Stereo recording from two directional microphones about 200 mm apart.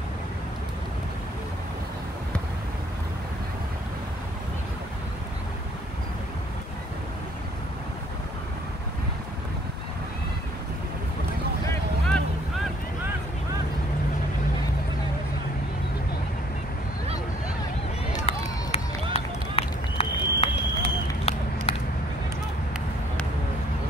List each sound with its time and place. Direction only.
18.1 s run: 30° left (ahead or behind)